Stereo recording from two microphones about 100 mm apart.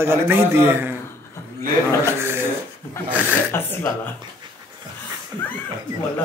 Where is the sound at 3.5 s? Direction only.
20° left (ahead or behind).